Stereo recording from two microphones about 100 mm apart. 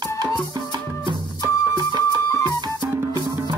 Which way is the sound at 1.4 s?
35° right (ahead or behind).